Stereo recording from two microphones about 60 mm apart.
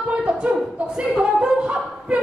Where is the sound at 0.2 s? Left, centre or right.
Centre.